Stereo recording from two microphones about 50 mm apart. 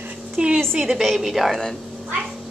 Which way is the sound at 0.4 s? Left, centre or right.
Right.